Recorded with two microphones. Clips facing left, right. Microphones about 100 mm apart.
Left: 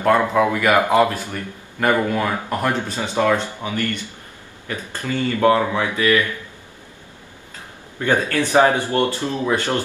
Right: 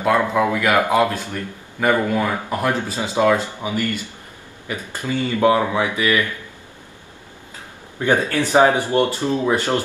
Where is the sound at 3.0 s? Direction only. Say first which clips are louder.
Right 2 dB; 15° right (ahead or behind).